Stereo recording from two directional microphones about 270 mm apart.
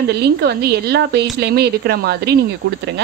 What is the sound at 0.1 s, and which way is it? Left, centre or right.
A woman's voice, right.